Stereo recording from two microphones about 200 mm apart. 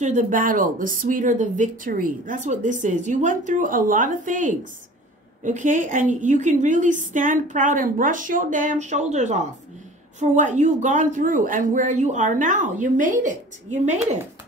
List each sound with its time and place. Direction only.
0.0 s speech: 40° right (ahead or behind)